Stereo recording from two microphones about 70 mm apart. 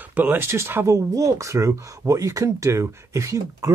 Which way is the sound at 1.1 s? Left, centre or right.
Right.